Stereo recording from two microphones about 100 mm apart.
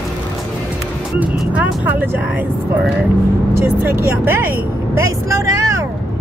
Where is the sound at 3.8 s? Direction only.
20° right (ahead or behind).